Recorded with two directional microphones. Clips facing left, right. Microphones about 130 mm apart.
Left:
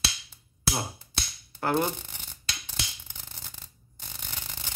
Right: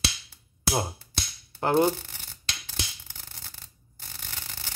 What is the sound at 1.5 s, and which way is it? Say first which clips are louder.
Speech: right 4 dB; 20° right (ahead or behind).